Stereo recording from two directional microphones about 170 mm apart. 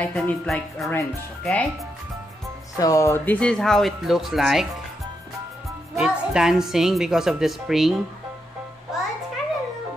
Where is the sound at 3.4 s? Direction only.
5° left (ahead or behind).